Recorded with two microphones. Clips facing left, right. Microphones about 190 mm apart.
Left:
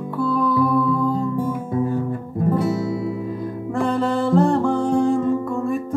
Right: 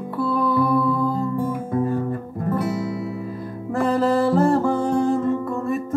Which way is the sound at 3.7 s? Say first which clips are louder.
Right 2 dB; 5° right (ahead or behind).